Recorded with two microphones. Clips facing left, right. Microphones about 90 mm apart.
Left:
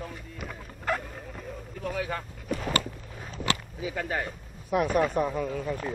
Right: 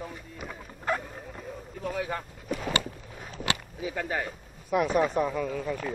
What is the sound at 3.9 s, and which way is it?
Speech, 15° right (ahead or behind).